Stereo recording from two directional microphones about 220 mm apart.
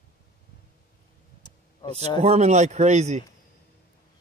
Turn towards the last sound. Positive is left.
turn(degrees=-30)  # may be behind; listen again after turning